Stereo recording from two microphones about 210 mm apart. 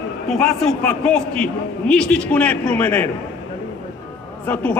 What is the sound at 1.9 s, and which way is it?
A man's voice, 5° left (ahead or behind).